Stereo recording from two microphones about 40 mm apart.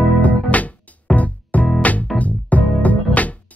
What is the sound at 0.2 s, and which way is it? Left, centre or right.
Music, left.